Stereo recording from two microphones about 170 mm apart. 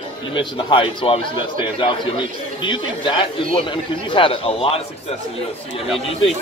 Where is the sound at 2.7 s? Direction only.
30° left (ahead or behind).